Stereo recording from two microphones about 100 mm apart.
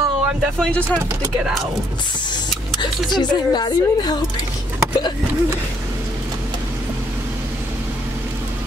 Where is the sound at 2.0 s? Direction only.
50° left (ahead or behind).